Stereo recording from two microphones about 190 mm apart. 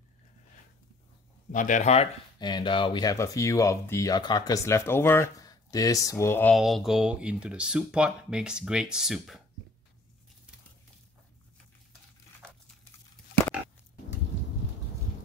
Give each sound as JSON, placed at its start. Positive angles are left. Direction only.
{"t": 1.5, "sound": "speech", "side_deg": 40}
{"t": 2.3, "sound": "speech", "side_deg": 25}
{"t": 6.5, "sound": "speech", "side_deg": 0}